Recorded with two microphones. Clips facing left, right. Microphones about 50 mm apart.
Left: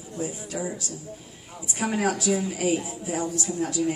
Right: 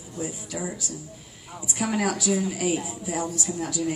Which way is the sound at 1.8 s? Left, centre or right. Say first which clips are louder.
Even; left.